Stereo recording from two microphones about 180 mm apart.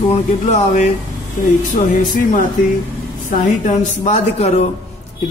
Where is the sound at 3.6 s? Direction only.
40° left (ahead or behind).